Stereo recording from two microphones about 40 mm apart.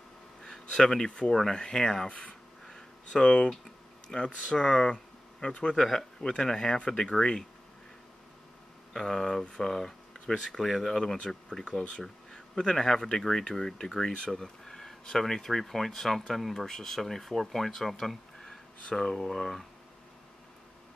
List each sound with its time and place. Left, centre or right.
0.4 s a sound: centre
1.5 s speech: centre
2.0 s speech: left
2.6 s a sound: left
3.4 s speech: centre
4.9 s a sound: left
5.8 s speech: centre
8.9 s speech: centre
11.1 s speech: left